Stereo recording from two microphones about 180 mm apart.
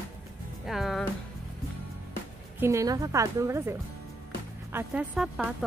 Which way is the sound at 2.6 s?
15° right (ahead or behind).